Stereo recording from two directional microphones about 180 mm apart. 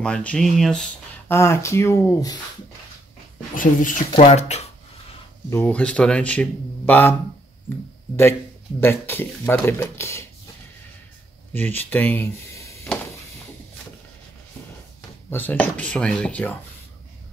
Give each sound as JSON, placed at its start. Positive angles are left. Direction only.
{"t": 0.0, "sound": "speech", "side_deg": 5}
{"t": 1.3, "sound": "speech", "side_deg": 15}
{"t": 3.5, "sound": "speech", "side_deg": 45}
{"t": 5.5, "sound": "speech", "side_deg": 10}
{"t": 8.8, "sound": "speech", "side_deg": 10}
{"t": 11.5, "sound": "speech", "side_deg": 10}
{"t": 15.2, "sound": "speech", "side_deg": 10}